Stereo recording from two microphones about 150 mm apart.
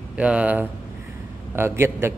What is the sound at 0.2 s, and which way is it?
A man's voice, 10° right (ahead or behind).